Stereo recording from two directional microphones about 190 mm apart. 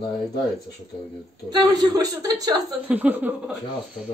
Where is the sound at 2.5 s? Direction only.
10° right (ahead or behind).